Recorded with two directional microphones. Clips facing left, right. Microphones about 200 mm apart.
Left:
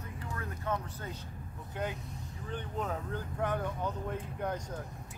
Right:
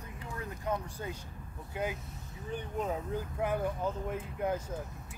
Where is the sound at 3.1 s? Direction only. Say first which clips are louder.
Even; 10° right (ahead or behind).